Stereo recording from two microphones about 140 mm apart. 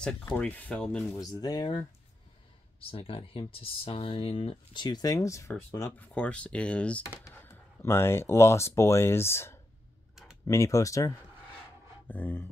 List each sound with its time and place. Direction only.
0.0 s speech: 10° left (ahead or behind)
1.1 s speech: 25° left (ahead or behind)
2.8 s speech: 40° left (ahead or behind); by 11.1 s 25° left (ahead or behind)
12.1 s speech: 15° left (ahead or behind)